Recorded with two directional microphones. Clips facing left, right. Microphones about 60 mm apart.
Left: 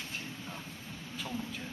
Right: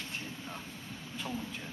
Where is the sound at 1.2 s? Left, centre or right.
Centre.